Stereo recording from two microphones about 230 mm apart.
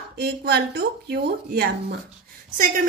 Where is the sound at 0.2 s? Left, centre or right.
Right.